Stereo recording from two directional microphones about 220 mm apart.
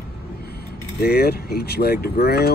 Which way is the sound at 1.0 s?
45° left (ahead or behind).